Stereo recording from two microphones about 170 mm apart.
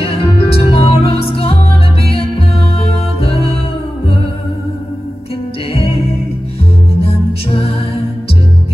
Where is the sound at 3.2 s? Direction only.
35° left (ahead or behind).